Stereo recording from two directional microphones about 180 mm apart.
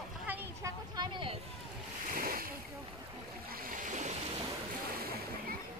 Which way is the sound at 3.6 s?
50° right (ahead or behind).